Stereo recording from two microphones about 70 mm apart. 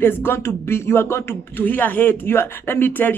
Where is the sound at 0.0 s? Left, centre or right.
Left.